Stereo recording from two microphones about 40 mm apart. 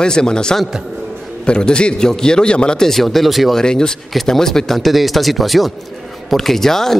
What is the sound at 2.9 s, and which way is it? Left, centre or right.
Speech, centre.